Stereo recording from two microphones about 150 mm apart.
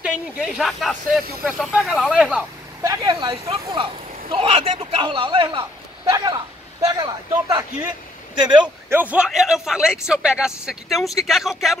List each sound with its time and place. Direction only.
0.0 s a man's voice: 5° right (ahead or behind)
2.8 s a man's voice: 20° right (ahead or behind)
8.8 s a man's voice: 10° right (ahead or behind)